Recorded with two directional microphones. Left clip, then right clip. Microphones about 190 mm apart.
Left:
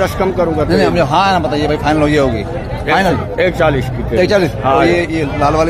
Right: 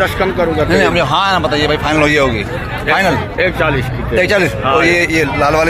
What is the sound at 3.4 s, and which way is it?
Speech, 65° left (ahead or behind).